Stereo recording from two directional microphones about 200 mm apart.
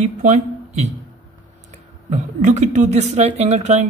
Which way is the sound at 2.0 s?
35° right (ahead or behind).